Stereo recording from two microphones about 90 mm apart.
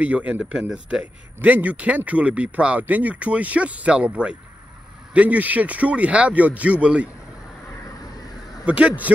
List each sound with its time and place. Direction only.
0.0 s speech: 15° right (ahead or behind)
8.6 s speech: 15° right (ahead or behind)